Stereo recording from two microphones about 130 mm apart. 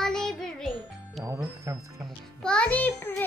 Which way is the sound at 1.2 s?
20° right (ahead or behind).